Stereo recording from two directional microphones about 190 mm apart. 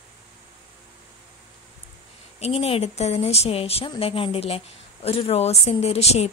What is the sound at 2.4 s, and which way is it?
A woman's voice, 30° left (ahead or behind).